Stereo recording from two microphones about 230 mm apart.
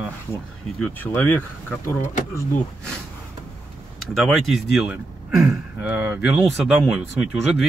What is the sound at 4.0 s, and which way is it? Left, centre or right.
Speech, centre.